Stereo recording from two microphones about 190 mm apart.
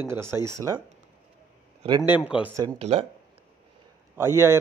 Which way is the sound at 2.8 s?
30° right (ahead or behind).